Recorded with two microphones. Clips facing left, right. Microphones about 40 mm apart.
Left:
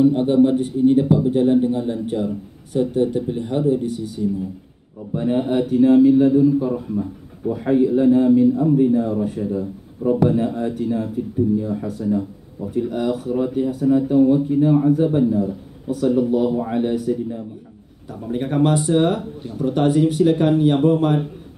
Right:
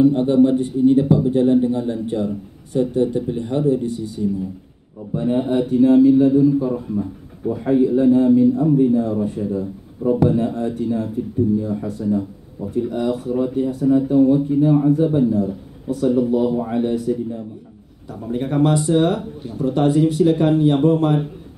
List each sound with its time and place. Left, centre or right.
0.0 s speech: centre
18.8 s speech: centre
19.0 s speech: centre